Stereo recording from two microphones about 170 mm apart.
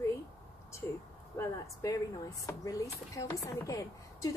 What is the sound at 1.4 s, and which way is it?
Speech, 20° left (ahead or behind).